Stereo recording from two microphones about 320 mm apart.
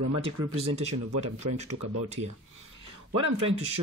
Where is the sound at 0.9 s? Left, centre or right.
Right.